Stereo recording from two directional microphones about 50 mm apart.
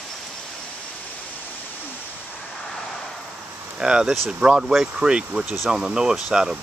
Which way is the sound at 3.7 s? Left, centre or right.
Centre.